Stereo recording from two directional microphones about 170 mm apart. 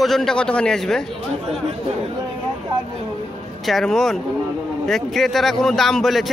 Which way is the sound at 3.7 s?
Centre (ahead or behind).